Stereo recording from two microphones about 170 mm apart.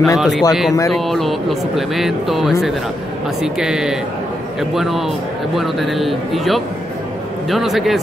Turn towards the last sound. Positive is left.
turn(degrees=0)  # may be behind; listen again after turning